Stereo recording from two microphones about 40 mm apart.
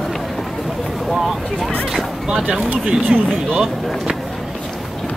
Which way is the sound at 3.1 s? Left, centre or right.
Centre.